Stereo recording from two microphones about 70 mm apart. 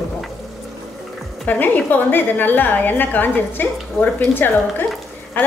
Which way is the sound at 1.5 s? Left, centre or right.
Left.